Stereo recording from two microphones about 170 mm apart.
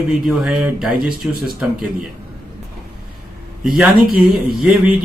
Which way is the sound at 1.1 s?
60° left (ahead or behind).